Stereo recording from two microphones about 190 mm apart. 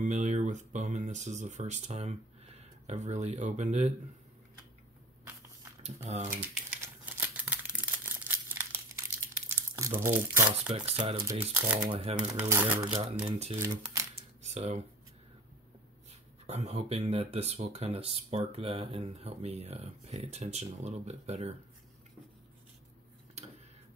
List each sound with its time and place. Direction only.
0.0 s speech: 40° right (ahead or behind)
5.8 s speech: 35° right (ahead or behind)
6.3 s crumpling: 10° right (ahead or behind)
10.7 s speech: 25° right (ahead or behind)
12.2 s speech: 10° right (ahead or behind)
13.2 s speech: 30° right (ahead or behind)
14.4 s a sound: 35° right (ahead or behind)
16.4 s speech: 35° right (ahead or behind)